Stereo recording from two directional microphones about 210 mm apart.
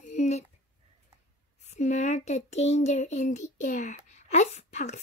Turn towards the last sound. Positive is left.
turn(degrees=35)  # may be behind; listen again after turning